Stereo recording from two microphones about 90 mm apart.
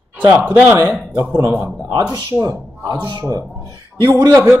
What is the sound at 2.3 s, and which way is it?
Speech, 35° right (ahead or behind).